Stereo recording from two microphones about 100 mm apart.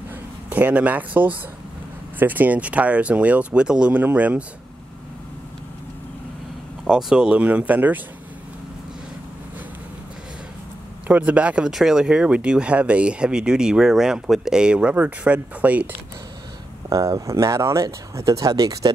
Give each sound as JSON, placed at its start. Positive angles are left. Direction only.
{"t": 0.5, "sound": "speech", "side_deg": -15}
{"t": 6.8, "sound": "speech", "side_deg": -5}
{"t": 11.1, "sound": "speech", "side_deg": -15}
{"t": 16.9, "sound": "speech", "side_deg": -35}